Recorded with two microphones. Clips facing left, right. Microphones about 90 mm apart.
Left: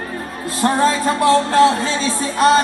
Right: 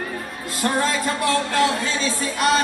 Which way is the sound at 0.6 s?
30° left (ahead or behind).